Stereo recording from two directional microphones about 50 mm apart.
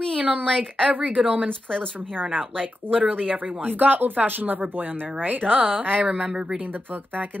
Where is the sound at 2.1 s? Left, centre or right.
Right.